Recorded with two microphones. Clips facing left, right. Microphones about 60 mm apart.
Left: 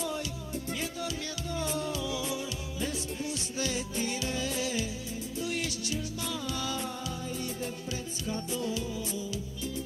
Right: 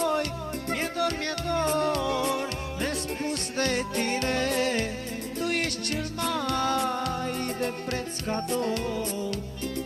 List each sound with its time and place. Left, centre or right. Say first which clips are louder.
0.0 s music: right 8 dB; right